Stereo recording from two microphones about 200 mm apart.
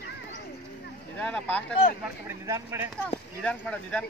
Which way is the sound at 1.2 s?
5° left (ahead or behind).